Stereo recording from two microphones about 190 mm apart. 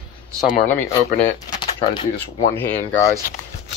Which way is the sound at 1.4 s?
25° left (ahead or behind).